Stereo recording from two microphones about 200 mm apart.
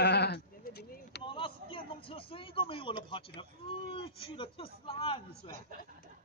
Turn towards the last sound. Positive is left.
turn(degrees=30)  # may be behind; listen again after turning